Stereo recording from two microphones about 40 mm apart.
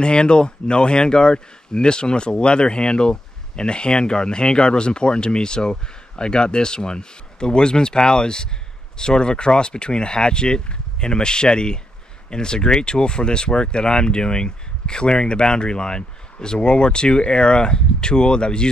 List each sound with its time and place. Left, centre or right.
0.0 s speech: left